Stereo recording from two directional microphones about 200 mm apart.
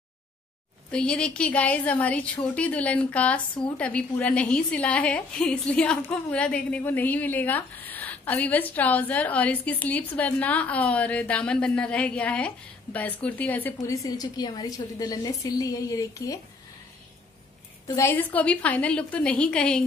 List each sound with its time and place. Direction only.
0.9 s a woman's voice: 5° left (ahead or behind)
17.8 s a woman's voice: 15° left (ahead or behind)